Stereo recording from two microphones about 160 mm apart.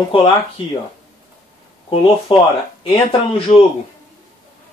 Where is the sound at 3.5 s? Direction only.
45° left (ahead or behind).